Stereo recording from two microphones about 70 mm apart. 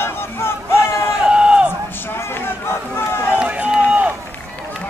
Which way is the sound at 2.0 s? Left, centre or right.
Left.